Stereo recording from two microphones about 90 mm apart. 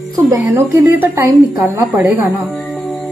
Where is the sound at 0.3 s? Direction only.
25° right (ahead or behind).